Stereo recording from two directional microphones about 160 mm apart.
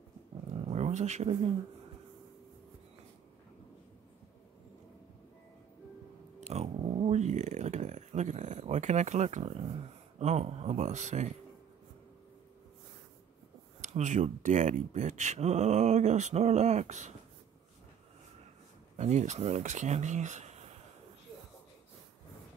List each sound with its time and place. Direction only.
0.7 s roaring cats: 40° right (ahead or behind)
6.4 s a sound: 40° right (ahead or behind)
10.1 s speech: 40° right (ahead or behind)
13.8 s speech: 50° right (ahead or behind)
18.9 s speech: 45° right (ahead or behind)